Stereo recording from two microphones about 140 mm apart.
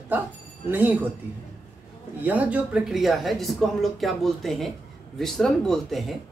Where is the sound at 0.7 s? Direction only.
15° right (ahead or behind).